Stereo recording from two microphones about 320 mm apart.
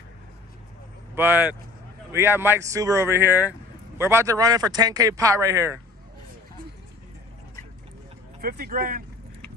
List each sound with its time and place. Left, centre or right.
1.1 s speech: centre
8.4 s speech: right